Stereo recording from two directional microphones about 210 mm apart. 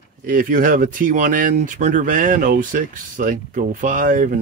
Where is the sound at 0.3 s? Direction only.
40° right (ahead or behind).